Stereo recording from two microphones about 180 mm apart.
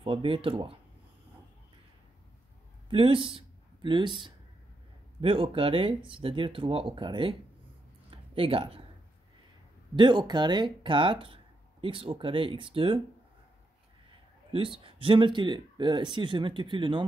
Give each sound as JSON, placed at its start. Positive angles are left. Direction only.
{"t": 0.0, "sound": "speech", "side_deg": -30}
{"t": 2.9, "sound": "speech", "side_deg": -30}
{"t": 8.1, "sound": "a sound", "side_deg": -30}
{"t": 9.9, "sound": "speech", "side_deg": -25}
{"t": 14.5, "sound": "speech", "side_deg": -30}